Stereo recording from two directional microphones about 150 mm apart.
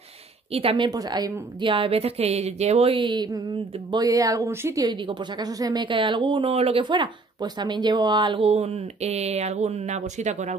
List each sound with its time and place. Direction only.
0.5 s a woman's voice: 40° right (ahead or behind); by 4.8 s 20° right (ahead or behind)
4.8 s a woman's voice: 30° right (ahead or behind); by 10.5 s 50° right (ahead or behind)